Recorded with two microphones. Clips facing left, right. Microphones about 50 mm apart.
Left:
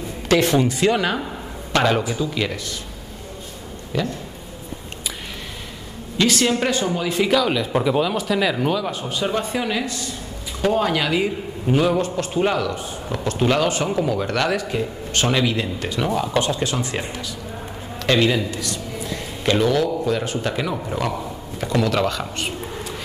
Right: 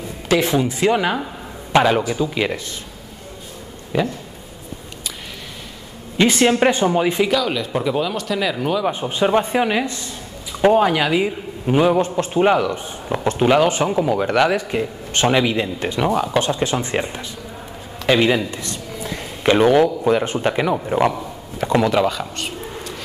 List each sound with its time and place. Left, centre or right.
0.3 s a man's voice: centre
3.9 s a man's voice: centre
6.1 s a man's voice: right
7.2 s speech: centre
8.8 s a man's voice: right
18.0 s a sound: centre
19.6 s a man's voice: right
21.9 s a man's voice: centre
22.2 s a sound: centre